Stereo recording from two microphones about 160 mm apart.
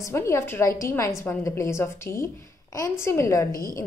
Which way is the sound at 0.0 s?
15° left (ahead or behind).